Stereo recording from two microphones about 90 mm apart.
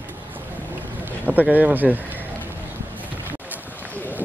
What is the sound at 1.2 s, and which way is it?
Speech, 20° right (ahead or behind).